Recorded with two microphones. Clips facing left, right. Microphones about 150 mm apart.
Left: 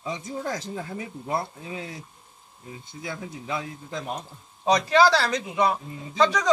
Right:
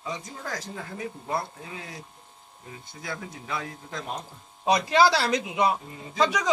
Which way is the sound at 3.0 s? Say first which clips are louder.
Left 2 dB; 20° left (ahead or behind).